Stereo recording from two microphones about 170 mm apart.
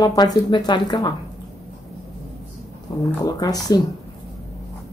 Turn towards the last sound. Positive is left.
turn(degrees=25)  # may be behind; listen again after turning